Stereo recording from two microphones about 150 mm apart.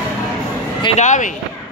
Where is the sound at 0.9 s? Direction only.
55° left (ahead or behind).